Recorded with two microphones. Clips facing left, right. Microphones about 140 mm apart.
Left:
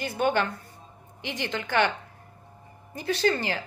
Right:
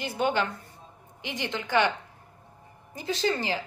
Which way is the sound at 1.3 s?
15° right (ahead or behind).